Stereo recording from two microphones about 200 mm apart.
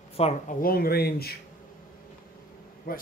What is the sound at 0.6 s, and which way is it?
Speech, 50° left (ahead or behind).